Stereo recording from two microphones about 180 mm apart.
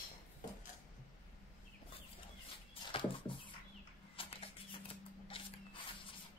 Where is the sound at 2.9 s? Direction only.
30° left (ahead or behind).